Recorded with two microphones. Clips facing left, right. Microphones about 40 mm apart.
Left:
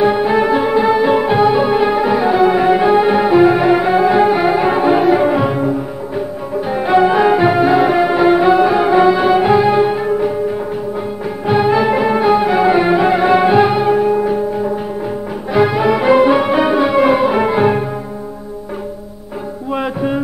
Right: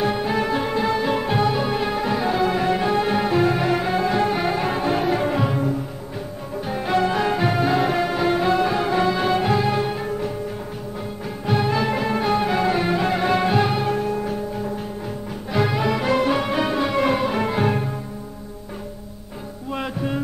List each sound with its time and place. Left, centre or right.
0.0 s music: centre
11.4 s music: centre
15.5 s music: centre
19.7 s music: centre